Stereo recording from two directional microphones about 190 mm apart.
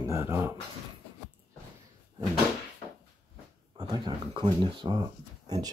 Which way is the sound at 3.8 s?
20° right (ahead or behind).